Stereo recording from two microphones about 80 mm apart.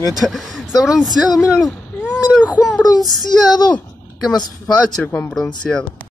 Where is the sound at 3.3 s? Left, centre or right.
Left.